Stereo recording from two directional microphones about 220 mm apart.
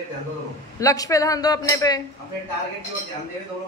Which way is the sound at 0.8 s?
15° left (ahead or behind).